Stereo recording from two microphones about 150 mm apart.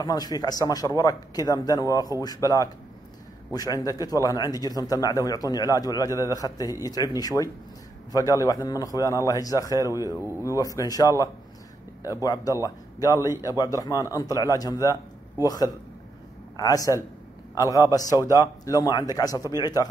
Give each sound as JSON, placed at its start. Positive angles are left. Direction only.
{"t": 0.0, "sound": "a man's voice", "side_deg": 25}
{"t": 3.8, "sound": "a man's voice", "side_deg": 25}